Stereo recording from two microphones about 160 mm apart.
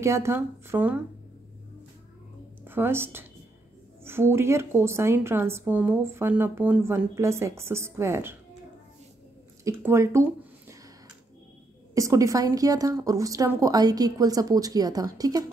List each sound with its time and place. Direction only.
0.0 s a woman's voice: 15° right (ahead or behind)
2.6 s a woman's voice: 15° right (ahead or behind)
9.7 s a woman's voice: 15° right (ahead or behind)
11.9 s a woman's voice: 20° right (ahead or behind)